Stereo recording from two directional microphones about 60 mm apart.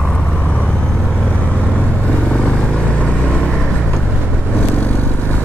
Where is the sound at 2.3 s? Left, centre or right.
Centre.